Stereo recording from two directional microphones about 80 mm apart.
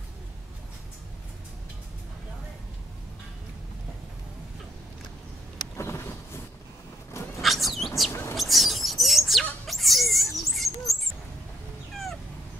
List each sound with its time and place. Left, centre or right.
5.8 s vehicle: left
7.4 s bird: centre
8.1 s bird: left
8.4 s bird: centre
9.4 s a sound: centre